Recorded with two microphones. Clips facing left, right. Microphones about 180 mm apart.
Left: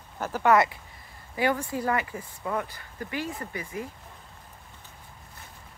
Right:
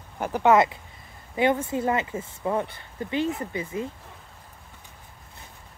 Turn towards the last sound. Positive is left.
turn(degrees=-25)  # may be behind; listen again after turning